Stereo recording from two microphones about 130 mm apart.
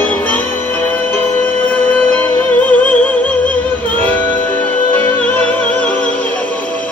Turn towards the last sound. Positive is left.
turn(degrees=10)  # may be behind; listen again after turning